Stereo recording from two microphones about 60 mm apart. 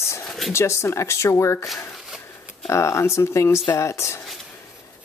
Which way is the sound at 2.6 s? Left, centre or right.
Left.